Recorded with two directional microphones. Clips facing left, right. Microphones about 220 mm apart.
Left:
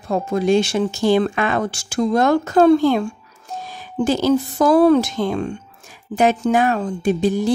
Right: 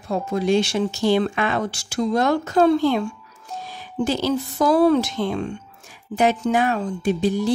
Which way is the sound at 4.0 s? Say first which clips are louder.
Left 5 dB; 45° left (ahead or behind).